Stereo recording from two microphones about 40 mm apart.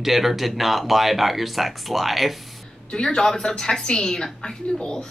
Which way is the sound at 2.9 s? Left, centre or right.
Centre.